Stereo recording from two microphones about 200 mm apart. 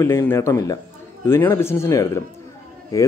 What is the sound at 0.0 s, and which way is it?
Speech, 10° left (ahead or behind).